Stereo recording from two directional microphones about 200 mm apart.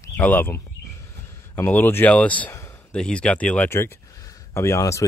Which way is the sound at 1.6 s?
10° left (ahead or behind).